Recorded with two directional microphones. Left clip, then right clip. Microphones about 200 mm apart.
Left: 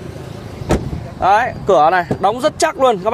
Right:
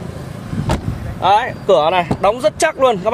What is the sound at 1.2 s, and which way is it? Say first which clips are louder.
Speech: left 1 dB; 30° left (ahead or behind).